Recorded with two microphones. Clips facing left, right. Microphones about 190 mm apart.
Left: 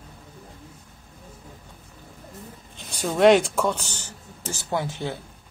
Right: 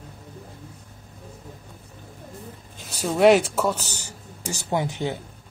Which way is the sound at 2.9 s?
Centre (ahead or behind).